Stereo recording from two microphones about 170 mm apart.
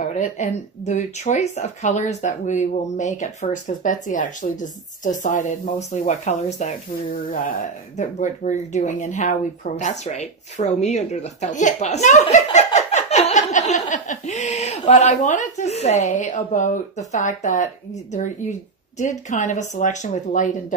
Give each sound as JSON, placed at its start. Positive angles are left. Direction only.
{"t": 0.0, "sound": "speech", "side_deg": 45}
{"t": 7.2, "sound": "speech", "side_deg": 55}